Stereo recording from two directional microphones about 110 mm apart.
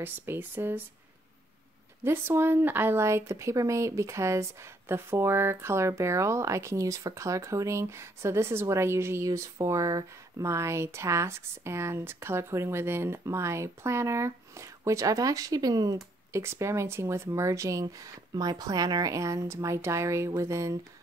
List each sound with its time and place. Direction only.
0.0 s speech: 20° right (ahead or behind)
2.0 s speech: 20° right (ahead or behind)